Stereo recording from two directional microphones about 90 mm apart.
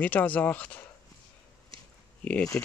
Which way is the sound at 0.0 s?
15° left (ahead or behind).